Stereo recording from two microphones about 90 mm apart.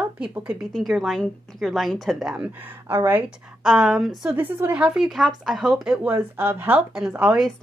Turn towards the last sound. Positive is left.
turn(degrees=-10)  # may be behind; listen again after turning